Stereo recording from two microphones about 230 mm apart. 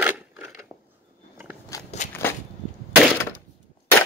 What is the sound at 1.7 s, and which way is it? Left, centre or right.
Walk, centre.